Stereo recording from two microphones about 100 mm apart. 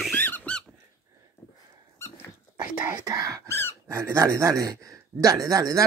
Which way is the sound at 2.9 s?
40° right (ahead or behind).